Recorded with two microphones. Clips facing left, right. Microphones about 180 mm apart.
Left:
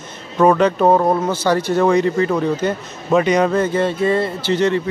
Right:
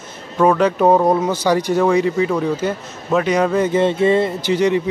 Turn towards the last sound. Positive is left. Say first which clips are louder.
# right 1 dB
turn(degrees=-10)  # may be behind; listen again after turning